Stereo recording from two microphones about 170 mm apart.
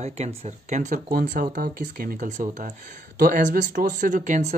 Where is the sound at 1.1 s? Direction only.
55° right (ahead or behind).